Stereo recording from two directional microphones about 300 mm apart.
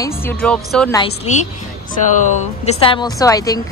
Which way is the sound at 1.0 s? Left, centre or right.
Left.